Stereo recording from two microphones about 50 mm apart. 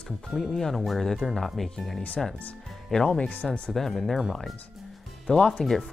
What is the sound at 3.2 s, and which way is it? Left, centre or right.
Speech, left.